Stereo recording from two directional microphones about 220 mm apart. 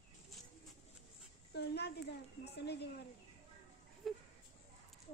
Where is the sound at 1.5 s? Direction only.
50° left (ahead or behind).